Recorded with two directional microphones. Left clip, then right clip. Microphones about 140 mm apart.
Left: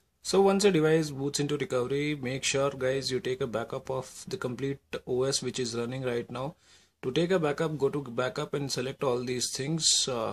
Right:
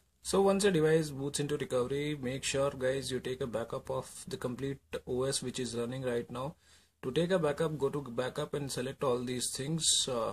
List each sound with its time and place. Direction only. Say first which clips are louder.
0.3 s speech: left 5 dB; 25° left (ahead or behind)